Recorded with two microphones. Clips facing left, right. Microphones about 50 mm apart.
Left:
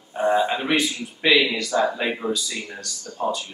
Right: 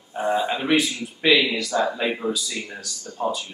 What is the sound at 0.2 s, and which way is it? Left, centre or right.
A man's voice, centre.